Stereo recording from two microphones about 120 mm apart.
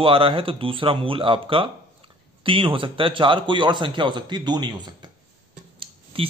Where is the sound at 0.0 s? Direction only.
45° right (ahead or behind).